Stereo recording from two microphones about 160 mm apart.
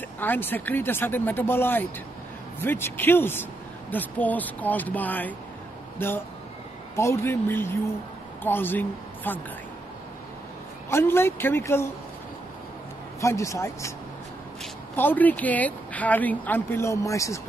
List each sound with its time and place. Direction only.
0.2 s a woman's voice: 10° left (ahead or behind)
10.9 s a woman's voice: 15° left (ahead or behind)
13.2 s speech: 20° left (ahead or behind)
15.0 s a woman's voice: 10° left (ahead or behind)